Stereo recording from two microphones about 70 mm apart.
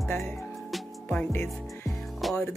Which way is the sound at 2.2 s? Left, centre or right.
Centre.